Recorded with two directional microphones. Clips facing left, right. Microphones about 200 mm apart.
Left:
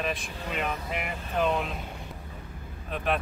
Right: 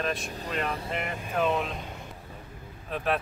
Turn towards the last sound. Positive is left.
turn(degrees=0)  # may be behind; listen again after turning